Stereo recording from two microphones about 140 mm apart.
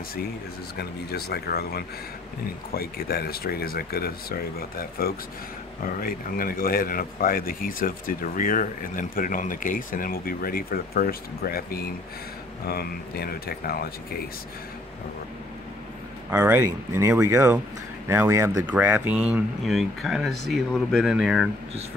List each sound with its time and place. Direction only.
2.7 s speech: 90° left
16.3 s speech: 15° right (ahead or behind)